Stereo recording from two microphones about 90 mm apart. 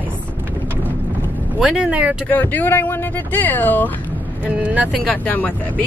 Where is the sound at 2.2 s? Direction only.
20° left (ahead or behind).